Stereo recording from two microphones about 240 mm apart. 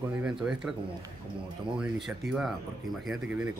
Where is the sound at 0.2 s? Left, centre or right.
Centre.